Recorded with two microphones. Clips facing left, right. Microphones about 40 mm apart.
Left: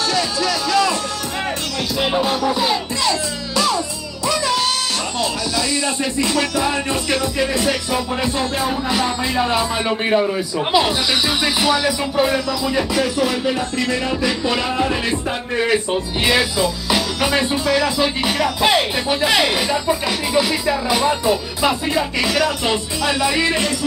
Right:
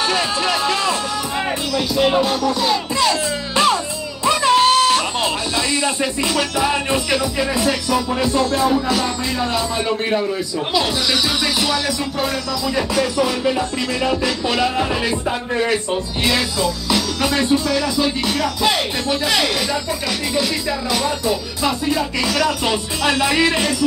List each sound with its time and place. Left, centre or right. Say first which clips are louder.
0.1 s speech: right 1 dB; right
2.0 s music: right 2 dB; centre
2.4 s speech: even; centre
3.0 s music: right 2 dB; right
6.5 s music: right 1 dB; centre
7.6 s speech: right 1 dB; centre
11.4 s speech: left 2 dB; centre